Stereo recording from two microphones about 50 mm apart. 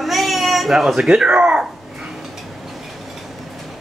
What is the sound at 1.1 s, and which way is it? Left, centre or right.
Speech, centre.